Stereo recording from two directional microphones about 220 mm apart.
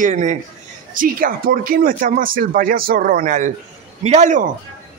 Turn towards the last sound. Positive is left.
turn(degrees=-35)  # may be behind; listen again after turning